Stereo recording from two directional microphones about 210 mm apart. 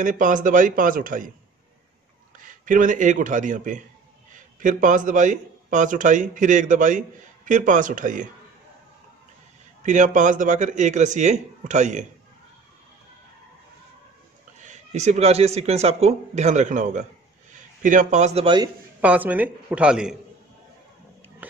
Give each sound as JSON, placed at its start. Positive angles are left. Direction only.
{"t": 0.0, "sound": "speech", "side_deg": -40}
{"t": 2.3, "sound": "a man's voice", "side_deg": -40}
{"t": 9.8, "sound": "speech", "side_deg": -35}
{"t": 14.6, "sound": "speech", "side_deg": -35}
{"t": 18.9, "sound": "a man's voice", "side_deg": -10}